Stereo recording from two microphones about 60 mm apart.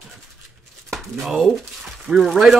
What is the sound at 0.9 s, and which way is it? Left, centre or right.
Speech, centre.